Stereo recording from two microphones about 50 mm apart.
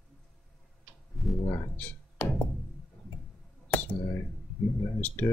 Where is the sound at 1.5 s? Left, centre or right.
Left.